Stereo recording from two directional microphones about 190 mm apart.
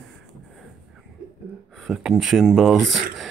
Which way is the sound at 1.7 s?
Centre (ahead or behind).